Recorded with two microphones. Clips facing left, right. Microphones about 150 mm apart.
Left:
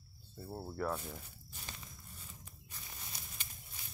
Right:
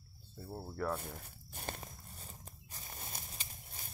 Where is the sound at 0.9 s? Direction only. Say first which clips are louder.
Even; 50° right (ahead or behind).